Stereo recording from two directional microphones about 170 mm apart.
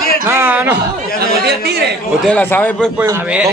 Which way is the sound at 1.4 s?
70° right (ahead or behind).